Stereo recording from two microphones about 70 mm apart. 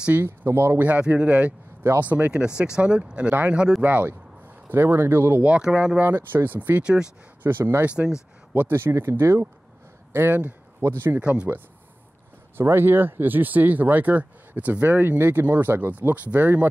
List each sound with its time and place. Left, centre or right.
0.2 s speech: right
0.8 s speech: centre
1.8 s speech: right
5.4 s speech: centre
6.8 s speech: centre
7.4 s speech: right
7.8 s speech: centre
8.5 s speech: right
11.1 s speech: centre
12.5 s speech: right